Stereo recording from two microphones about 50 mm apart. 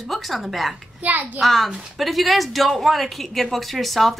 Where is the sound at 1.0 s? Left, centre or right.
Right.